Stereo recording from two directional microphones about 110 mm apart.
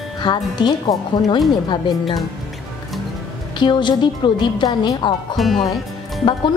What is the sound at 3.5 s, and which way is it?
A woman's voice, 45° left (ahead or behind).